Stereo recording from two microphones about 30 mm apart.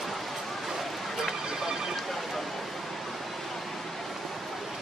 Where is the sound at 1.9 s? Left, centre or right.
Centre.